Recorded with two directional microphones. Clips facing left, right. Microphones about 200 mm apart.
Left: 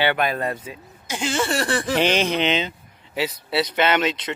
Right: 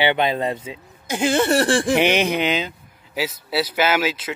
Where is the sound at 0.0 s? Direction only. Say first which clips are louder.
Right 2 dB; 20° right (ahead or behind).